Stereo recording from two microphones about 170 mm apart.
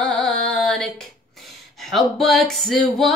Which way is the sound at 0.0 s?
5° left (ahead or behind).